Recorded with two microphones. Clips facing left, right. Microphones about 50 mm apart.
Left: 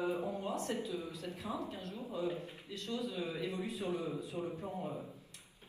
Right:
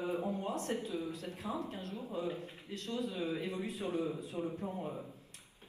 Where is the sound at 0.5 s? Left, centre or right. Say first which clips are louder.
Right 1 dB; right.